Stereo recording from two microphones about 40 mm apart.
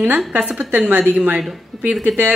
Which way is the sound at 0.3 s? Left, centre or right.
Right.